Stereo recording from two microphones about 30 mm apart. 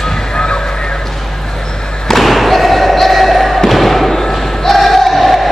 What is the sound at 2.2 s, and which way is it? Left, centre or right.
Thump, centre.